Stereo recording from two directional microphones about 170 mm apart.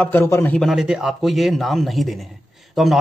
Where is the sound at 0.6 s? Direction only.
Centre (ahead or behind).